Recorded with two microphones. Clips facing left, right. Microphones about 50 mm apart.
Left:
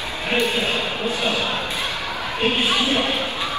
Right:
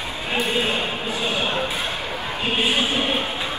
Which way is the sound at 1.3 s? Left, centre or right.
Right.